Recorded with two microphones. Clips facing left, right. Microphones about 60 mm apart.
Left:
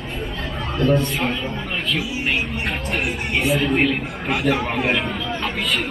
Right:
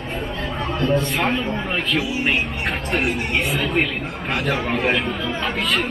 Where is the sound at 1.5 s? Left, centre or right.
Right.